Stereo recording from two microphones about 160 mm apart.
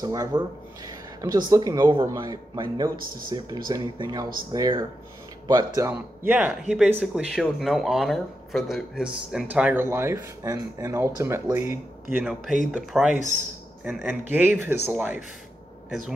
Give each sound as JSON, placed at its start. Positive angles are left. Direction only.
{"t": 0.0, "sound": "speech", "side_deg": -20}
{"t": 0.8, "sound": "a sound", "side_deg": -25}
{"t": 1.5, "sound": "speech", "side_deg": -25}
{"t": 13.1, "sound": "a man's voice", "side_deg": 50}
{"t": 13.8, "sound": "speech", "side_deg": -10}